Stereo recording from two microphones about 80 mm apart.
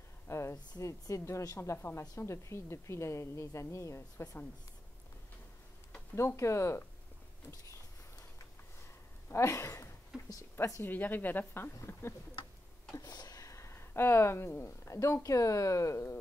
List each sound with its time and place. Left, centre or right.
0.3 s speech: left
1.6 s a woman's voice: left
6.1 s a woman's voice: left
9.3 s a woman's voice: left
10.1 s speech: centre
10.8 s speech: left
12.9 s a sound: left
13.5 s a woman's voice: left